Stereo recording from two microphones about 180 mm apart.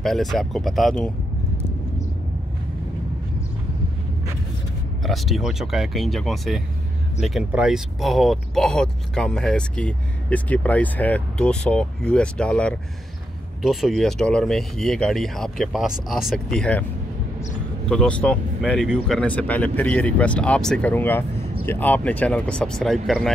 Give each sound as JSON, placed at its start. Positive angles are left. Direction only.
{"t": 0.0, "sound": "speech", "side_deg": 0}
{"t": 5.0, "sound": "speech", "side_deg": 0}
{"t": 17.8, "sound": "speech", "side_deg": 5}